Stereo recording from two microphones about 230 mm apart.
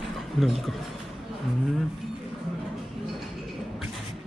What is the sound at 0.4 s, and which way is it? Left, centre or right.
Speech, centre.